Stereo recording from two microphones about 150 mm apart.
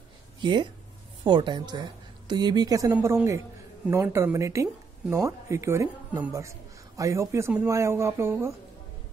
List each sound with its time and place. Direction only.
0.4 s a woman's voice: 30° right (ahead or behind)